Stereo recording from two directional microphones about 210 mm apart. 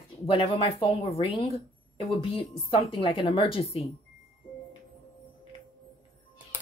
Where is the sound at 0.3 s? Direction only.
25° left (ahead or behind).